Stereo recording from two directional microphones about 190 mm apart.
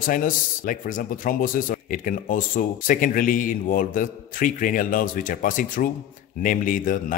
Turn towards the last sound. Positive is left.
turn(degrees=45)  # may be behind; listen again after turning